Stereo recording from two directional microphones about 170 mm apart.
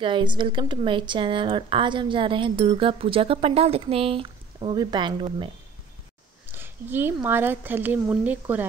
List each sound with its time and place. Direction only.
0.0 s speech: 30° right (ahead or behind)
6.4 s speech: 10° right (ahead or behind)